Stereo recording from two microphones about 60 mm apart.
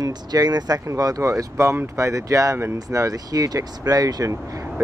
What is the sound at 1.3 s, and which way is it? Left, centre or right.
Speech, right.